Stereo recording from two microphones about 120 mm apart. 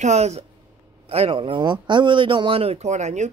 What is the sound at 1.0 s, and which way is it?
Speech, 55° right (ahead or behind).